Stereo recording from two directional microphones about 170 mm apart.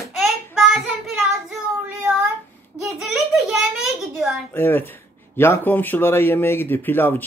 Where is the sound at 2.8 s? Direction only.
5° right (ahead or behind).